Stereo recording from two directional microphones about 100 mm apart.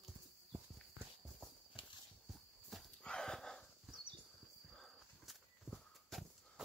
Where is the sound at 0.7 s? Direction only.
5° left (ahead or behind).